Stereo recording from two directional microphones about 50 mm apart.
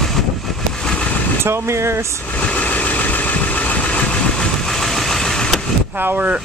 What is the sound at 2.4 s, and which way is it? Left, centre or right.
Vehicle, left.